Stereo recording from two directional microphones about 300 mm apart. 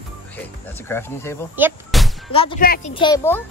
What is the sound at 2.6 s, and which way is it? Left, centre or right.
Speech, left.